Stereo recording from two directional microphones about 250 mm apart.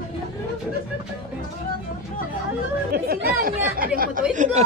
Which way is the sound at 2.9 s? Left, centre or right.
Right.